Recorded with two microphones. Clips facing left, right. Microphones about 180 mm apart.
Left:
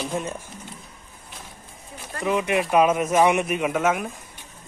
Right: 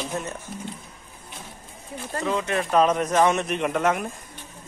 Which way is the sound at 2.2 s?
15° left (ahead or behind).